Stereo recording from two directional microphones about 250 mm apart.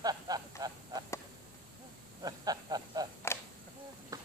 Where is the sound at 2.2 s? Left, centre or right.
Centre.